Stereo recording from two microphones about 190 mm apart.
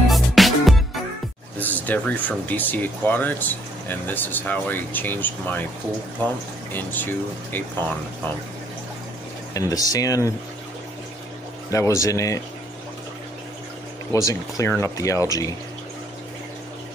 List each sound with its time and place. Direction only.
0.1 s music: centre (ahead or behind)
1.9 s speech: 10° left (ahead or behind)
9.5 s speech: 20° left (ahead or behind)
11.7 s speech: 15° left (ahead or behind)
14.1 s speech: 15° left (ahead or behind)